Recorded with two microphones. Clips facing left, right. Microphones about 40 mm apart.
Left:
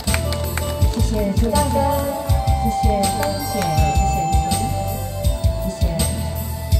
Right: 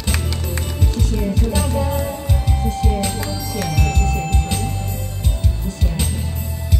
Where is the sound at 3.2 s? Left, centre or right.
Left.